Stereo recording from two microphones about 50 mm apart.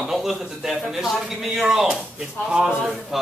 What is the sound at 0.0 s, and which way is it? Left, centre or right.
A man's voice, centre.